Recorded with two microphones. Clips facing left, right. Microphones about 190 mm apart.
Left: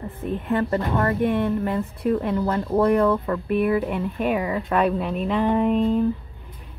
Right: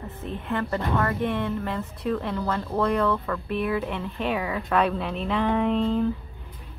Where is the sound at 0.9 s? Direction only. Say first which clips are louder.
Left 4 dB; 15° left (ahead or behind).